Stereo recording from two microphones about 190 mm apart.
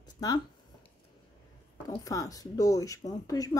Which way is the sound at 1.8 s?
20° left (ahead or behind).